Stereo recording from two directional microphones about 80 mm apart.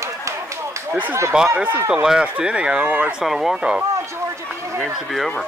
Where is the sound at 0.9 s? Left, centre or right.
Right.